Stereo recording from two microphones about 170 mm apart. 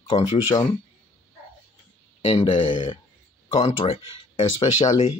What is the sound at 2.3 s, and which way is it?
Speech, 30° left (ahead or behind).